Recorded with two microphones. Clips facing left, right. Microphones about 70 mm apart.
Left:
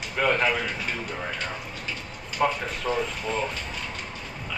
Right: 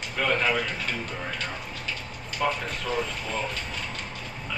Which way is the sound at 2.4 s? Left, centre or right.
Left.